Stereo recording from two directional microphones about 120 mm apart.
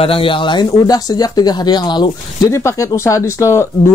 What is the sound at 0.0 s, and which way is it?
Speech, 50° left (ahead or behind).